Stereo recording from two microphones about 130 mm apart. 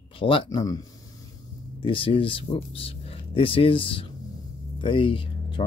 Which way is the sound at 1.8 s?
45° left (ahead or behind).